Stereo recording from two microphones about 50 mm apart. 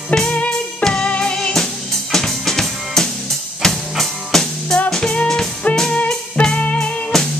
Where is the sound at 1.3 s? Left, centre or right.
Centre.